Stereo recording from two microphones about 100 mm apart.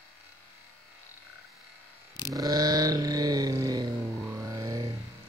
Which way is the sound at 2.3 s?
35° right (ahead or behind).